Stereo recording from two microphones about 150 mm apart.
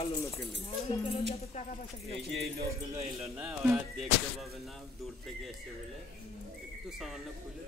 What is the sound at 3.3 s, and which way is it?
Speech, 5° right (ahead or behind).